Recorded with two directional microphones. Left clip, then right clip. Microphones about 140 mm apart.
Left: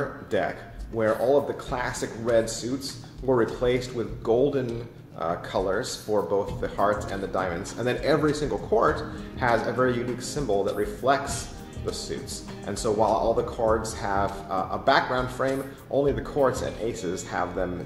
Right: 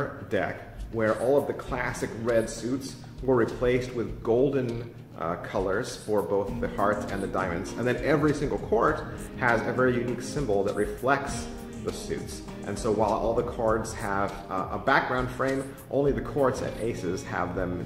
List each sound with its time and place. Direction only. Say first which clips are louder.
0.9 s speech: left 2 dB; 15° right (ahead or behind)
12.6 s speech: left 2 dB; 15° right (ahead or behind)